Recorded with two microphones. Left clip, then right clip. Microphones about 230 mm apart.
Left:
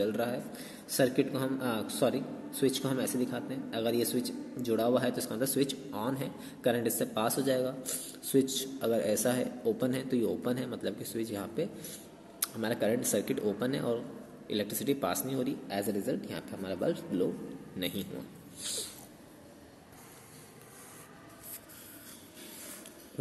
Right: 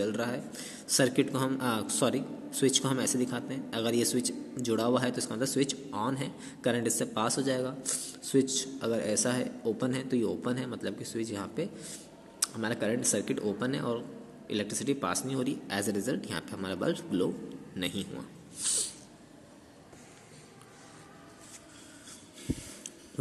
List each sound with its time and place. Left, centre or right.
0.0 s a man's voice: centre